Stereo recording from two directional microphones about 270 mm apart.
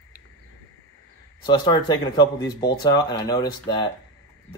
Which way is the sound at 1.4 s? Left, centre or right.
Centre.